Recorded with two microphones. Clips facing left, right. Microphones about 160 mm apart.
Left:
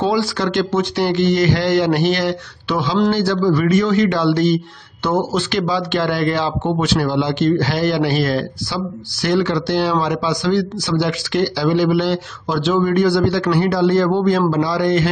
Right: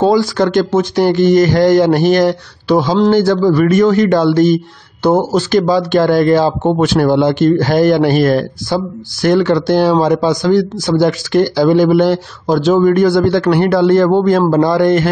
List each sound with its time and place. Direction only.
0.0 s a man's voice: 45° right (ahead or behind)